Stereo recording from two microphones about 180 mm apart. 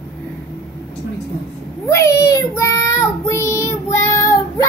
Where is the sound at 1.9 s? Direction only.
15° left (ahead or behind).